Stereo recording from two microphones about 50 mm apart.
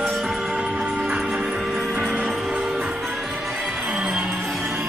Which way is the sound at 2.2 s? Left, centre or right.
Centre.